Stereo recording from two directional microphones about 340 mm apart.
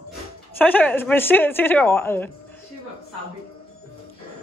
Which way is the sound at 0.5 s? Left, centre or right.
Centre.